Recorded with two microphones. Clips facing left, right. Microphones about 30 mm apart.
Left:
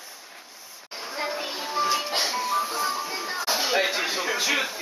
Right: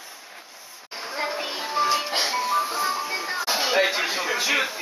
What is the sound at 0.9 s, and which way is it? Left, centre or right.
Music, centre.